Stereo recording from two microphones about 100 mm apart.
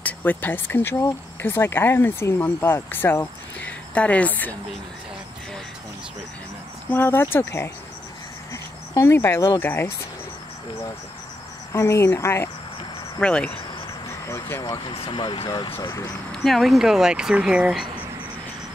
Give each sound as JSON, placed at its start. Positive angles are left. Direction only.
{"t": 0.0, "sound": "speech", "side_deg": 20}
{"t": 6.9, "sound": "speech", "side_deg": 20}
{"t": 8.9, "sound": "speech", "side_deg": 25}
{"t": 11.7, "sound": "speech", "side_deg": 30}
{"t": 13.2, "sound": "speech", "side_deg": 10}
{"t": 14.2, "sound": "speech", "side_deg": 30}
{"t": 14.6, "sound": "speech", "side_deg": 45}
{"t": 15.0, "sound": "speech", "side_deg": 55}
{"t": 16.3, "sound": "speech", "side_deg": 0}